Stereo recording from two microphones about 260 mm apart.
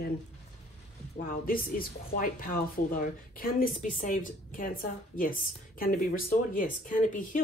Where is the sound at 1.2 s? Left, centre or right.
Left.